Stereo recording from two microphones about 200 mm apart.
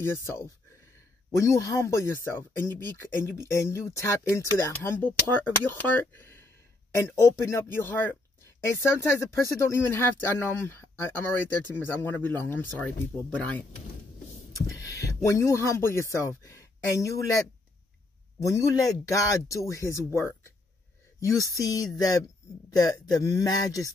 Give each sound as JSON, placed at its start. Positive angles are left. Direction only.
{"t": 0.0, "sound": "speech", "side_deg": 15}
{"t": 14.7, "sound": "heart sounds", "side_deg": 15}
{"t": 15.2, "sound": "speech", "side_deg": 15}
{"t": 18.4, "sound": "speech", "side_deg": 15}